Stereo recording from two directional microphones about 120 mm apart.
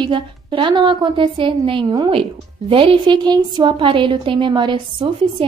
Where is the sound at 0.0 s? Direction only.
45° right (ahead or behind).